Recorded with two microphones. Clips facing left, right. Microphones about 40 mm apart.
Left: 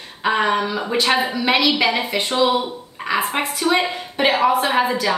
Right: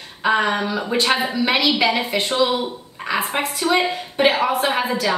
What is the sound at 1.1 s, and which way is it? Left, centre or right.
Speech, left.